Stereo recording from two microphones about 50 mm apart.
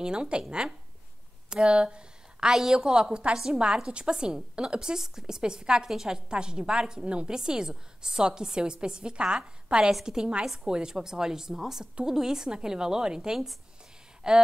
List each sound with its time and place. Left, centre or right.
0.0 s a woman's voice: centre